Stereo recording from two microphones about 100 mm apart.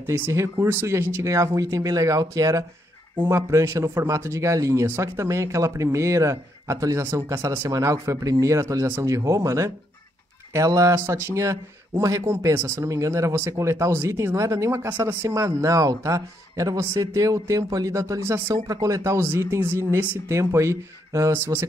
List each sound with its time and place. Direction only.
0.0 s speech: 25° right (ahead or behind)